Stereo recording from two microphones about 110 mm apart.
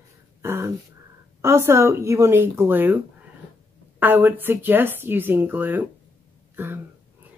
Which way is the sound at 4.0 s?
20° right (ahead or behind).